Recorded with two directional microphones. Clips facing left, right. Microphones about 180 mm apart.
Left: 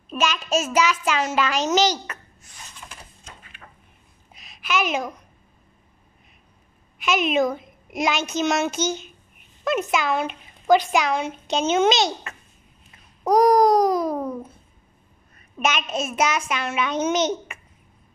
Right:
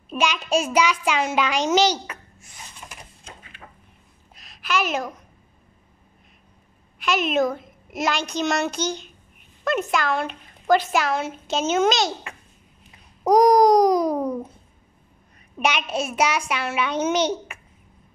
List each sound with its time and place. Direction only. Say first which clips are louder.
0.1 s a child's voice: right 1 dB; 15° right (ahead or behind)
4.3 s a sound: even; centre (ahead or behind)
7.0 s a woman's voice: left 1 dB; centre (ahead or behind)
13.3 s a child's voice: right 1 dB; 20° right (ahead or behind)
15.6 s a child's voice: right 1 dB; 10° right (ahead or behind)